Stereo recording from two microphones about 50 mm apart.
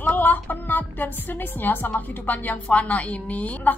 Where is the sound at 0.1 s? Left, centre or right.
Left.